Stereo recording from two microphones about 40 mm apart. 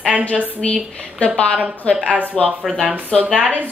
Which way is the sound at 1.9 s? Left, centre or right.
Left.